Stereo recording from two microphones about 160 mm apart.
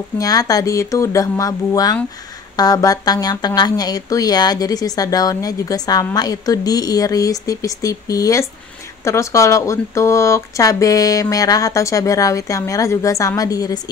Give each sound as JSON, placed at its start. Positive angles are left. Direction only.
{"t": 0.2, "sound": "speech", "side_deg": 20}